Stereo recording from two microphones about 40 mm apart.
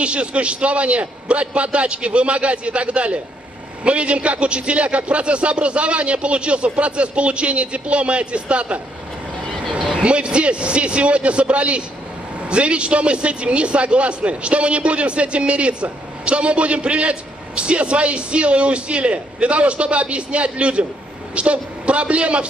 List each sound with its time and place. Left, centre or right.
0.0 s a man's voice: right
10.0 s a man's voice: right